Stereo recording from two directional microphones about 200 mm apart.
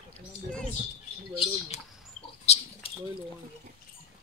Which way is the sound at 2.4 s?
30° left (ahead or behind).